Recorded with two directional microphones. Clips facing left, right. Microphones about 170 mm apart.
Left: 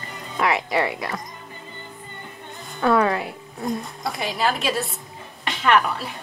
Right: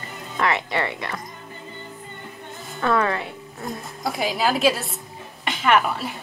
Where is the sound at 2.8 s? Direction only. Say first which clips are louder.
Left 3 dB; centre (ahead or behind).